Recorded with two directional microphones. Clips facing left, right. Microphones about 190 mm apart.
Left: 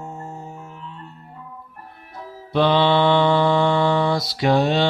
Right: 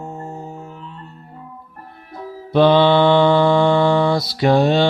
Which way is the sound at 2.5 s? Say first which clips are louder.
Right 5 dB; 45° right (ahead or behind).